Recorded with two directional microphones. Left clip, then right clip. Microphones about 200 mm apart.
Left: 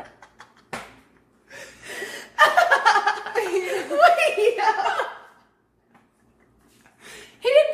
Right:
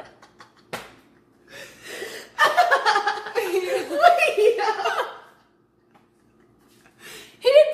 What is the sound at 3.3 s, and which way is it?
Chuckle, 15° right (ahead or behind).